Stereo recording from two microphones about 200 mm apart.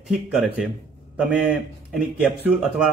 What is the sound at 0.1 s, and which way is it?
Speech, 5° right (ahead or behind).